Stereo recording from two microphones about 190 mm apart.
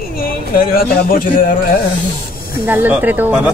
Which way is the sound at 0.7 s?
50° left (ahead or behind).